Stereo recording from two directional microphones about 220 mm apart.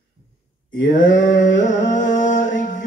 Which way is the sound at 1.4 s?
35° left (ahead or behind).